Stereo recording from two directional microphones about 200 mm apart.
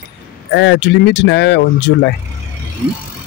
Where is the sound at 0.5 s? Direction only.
60° left (ahead or behind).